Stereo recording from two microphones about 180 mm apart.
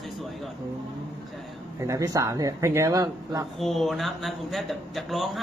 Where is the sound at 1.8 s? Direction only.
20° right (ahead or behind).